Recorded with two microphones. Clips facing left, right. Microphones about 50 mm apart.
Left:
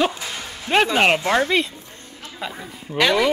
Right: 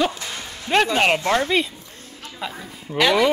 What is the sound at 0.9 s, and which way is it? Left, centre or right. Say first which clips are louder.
A woman's voice: left 1 dB; centre.